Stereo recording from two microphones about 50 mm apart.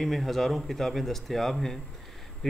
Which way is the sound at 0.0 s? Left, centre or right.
Centre.